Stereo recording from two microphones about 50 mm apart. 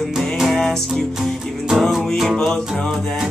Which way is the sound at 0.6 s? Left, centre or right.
Centre.